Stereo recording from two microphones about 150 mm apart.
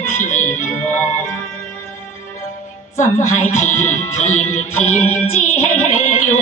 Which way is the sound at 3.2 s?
55° left (ahead or behind).